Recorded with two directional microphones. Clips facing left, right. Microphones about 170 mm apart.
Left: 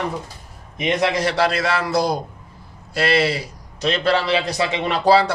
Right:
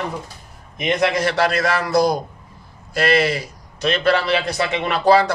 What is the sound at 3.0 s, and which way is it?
A man's voice, 30° left (ahead or behind).